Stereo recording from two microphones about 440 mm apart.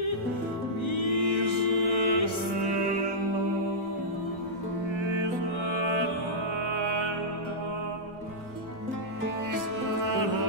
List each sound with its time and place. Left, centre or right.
0.8 s music: left
1.7 s mantra: left
2.6 s music: right
5.1 s music: right